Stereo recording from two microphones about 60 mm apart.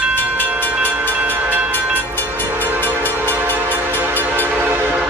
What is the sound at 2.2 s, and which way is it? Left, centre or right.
Train, left.